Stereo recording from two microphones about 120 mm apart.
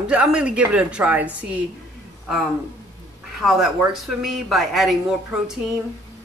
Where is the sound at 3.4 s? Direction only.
Centre (ahead or behind).